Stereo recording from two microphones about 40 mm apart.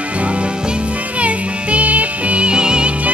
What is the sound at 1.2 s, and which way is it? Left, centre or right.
Music, right.